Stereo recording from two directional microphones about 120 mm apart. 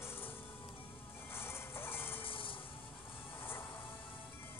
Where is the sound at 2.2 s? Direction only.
45° left (ahead or behind).